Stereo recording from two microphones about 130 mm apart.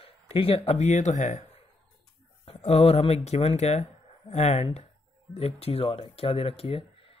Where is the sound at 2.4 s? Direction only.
50° left (ahead or behind).